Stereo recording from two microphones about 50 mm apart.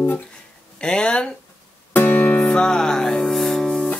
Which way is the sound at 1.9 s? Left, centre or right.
Left.